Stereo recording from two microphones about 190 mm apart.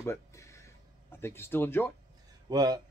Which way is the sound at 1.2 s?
10° left (ahead or behind).